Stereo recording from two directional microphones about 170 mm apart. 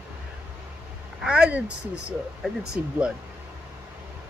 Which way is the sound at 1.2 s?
5° right (ahead or behind).